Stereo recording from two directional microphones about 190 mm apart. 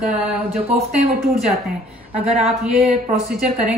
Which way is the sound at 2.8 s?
35° right (ahead or behind).